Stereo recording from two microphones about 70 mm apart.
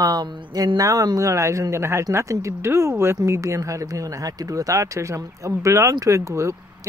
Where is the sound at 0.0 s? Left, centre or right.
Right.